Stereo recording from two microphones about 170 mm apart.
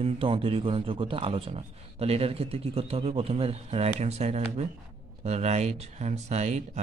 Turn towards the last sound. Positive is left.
turn(degrees=-40)  # may be behind; listen again after turning